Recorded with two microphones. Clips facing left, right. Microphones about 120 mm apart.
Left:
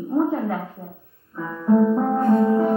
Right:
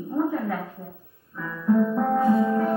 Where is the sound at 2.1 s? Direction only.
10° right (ahead or behind).